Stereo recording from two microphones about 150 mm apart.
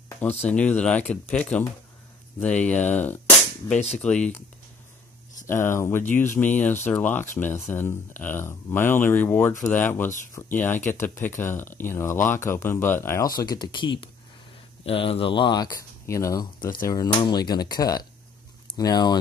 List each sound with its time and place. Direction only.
0.5 s speech: 10° left (ahead or behind)
5.5 s speech: 15° left (ahead or behind)